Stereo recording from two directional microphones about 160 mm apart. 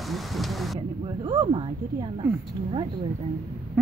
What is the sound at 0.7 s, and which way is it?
Speech, 30° right (ahead or behind).